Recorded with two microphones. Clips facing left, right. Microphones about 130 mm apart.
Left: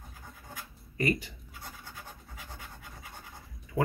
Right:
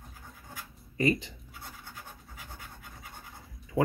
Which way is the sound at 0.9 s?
25° right (ahead or behind).